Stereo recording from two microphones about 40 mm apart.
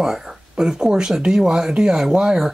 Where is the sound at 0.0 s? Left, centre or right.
Centre.